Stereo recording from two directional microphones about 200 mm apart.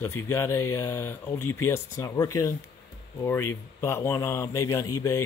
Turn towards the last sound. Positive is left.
turn(degrees=15)  # may be behind; listen again after turning